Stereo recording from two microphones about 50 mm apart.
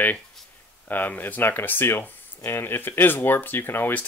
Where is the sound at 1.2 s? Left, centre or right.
Left.